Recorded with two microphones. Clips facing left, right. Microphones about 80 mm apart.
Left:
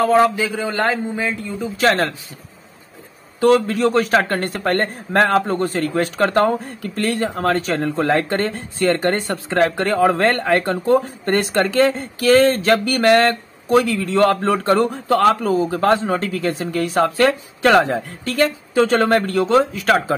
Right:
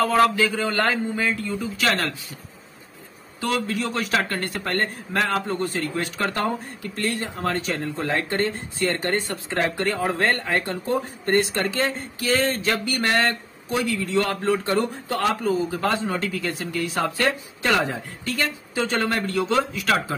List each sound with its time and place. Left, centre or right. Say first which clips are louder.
0.0 s a man's voice: left 4 dB; left
1.8 s speech: left 8 dB; left
3.3 s a man's voice: left 10 dB; left
7.1 s speech: left 7 dB; left
17.2 s a man's voice: left 8 dB; left